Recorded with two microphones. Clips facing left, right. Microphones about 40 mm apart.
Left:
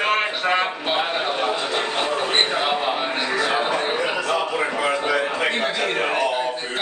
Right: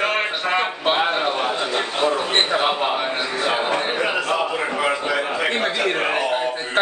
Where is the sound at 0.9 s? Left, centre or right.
Right.